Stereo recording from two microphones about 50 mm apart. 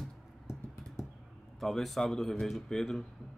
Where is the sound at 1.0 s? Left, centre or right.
Left.